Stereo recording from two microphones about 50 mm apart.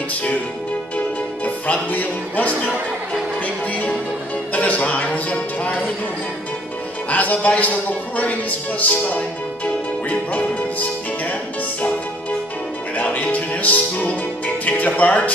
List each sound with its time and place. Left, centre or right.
0.1 s music: left
7.1 s a man's voice: left
10.0 s music: left
12.9 s music: left